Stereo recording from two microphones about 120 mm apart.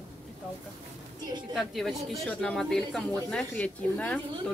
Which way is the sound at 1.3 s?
35° right (ahead or behind).